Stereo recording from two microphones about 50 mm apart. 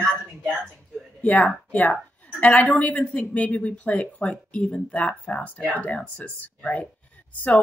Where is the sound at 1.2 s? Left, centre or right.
Left.